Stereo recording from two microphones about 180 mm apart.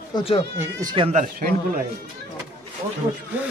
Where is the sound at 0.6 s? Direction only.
20° right (ahead or behind).